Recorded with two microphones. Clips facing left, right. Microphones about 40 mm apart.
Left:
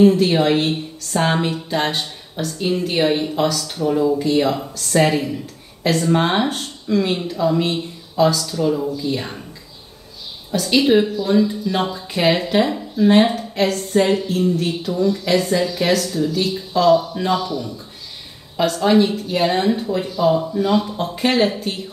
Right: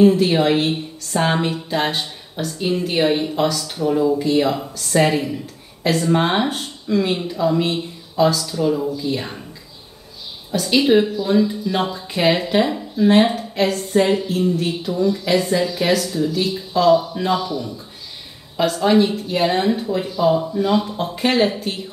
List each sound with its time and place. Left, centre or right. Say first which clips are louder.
0.0 s speech: even; centre
10.5 s speech: even; centre